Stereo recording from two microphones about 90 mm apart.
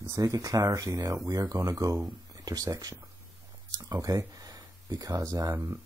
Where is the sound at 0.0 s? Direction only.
40° right (ahead or behind).